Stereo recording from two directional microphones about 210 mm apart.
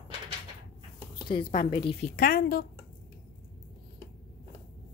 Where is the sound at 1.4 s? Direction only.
40° left (ahead or behind).